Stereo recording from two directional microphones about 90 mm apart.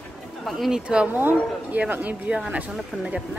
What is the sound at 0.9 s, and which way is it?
Speech, 15° right (ahead or behind).